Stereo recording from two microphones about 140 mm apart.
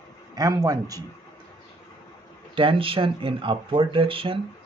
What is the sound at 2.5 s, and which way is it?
Speech, 35° right (ahead or behind).